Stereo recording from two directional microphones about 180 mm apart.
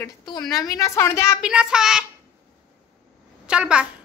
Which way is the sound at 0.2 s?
25° left (ahead or behind).